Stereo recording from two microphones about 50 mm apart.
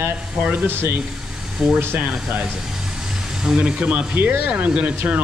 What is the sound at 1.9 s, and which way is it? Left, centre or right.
Speech, right.